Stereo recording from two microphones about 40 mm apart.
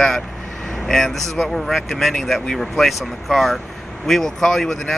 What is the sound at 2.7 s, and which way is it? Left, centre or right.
Speech, centre.